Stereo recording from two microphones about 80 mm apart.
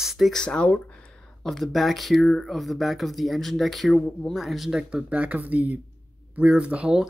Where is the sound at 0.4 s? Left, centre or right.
Centre.